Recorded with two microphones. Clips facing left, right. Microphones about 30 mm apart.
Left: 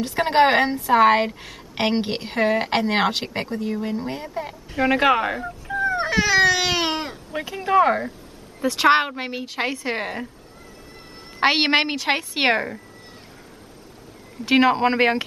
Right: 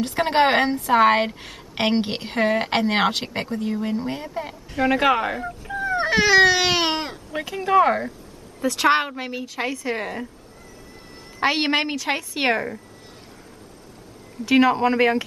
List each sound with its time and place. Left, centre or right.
0.0 s a woman's voice: centre
5.7 s dog: centre
6.0 s baby cry: right
6.4 s baby cry: centre
7.3 s a woman's voice: centre
8.5 s a woman's voice: centre
11.3 s a woman's voice: left
14.4 s a woman's voice: left